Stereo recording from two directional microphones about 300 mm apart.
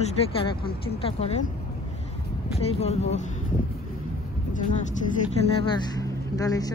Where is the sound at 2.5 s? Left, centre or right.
Left.